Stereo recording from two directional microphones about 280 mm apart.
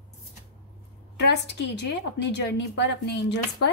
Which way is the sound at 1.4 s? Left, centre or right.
Left.